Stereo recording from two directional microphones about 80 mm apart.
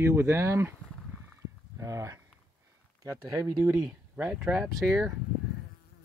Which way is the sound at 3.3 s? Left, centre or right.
Right.